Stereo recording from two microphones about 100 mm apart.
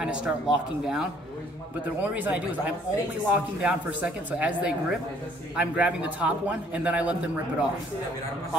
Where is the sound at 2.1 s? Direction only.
15° right (ahead or behind).